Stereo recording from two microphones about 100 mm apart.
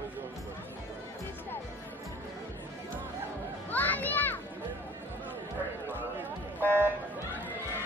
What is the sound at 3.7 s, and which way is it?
Children playing, 15° left (ahead or behind).